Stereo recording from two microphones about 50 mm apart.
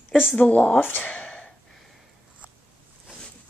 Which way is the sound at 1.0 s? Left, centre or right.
Left.